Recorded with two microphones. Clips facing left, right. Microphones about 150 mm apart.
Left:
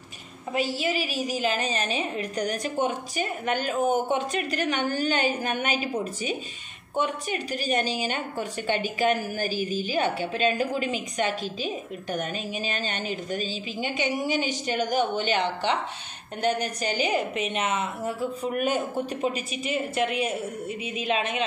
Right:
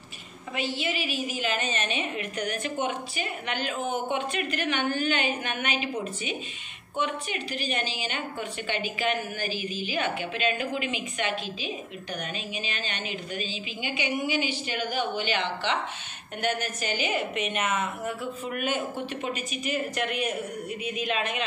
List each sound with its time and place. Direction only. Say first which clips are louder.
0.5 s a woman's voice: left 4 dB; 40° left (ahead or behind)
7.0 s a woman's voice: left 3 dB; 40° left (ahead or behind)
16.3 s a woman's voice: left 3 dB; 35° left (ahead or behind)